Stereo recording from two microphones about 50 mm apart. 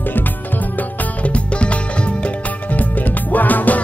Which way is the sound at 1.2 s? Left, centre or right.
Left.